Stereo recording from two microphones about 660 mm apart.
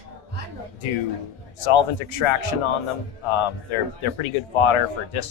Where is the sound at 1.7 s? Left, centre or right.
Left.